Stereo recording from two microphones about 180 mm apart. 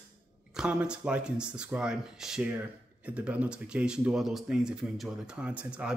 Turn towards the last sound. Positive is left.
turn(degrees=-5)  # may be behind; listen again after turning